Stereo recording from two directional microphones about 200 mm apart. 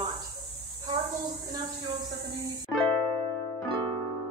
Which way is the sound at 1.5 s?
20° right (ahead or behind).